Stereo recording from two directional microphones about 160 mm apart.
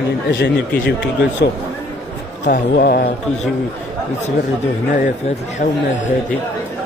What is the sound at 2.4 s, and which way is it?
Speech, 75° left (ahead or behind).